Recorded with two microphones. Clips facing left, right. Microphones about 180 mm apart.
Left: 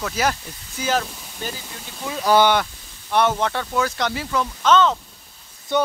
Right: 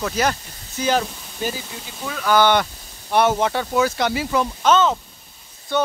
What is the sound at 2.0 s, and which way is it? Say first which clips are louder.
Speech: left 1 dB; 25° left (ahead or behind).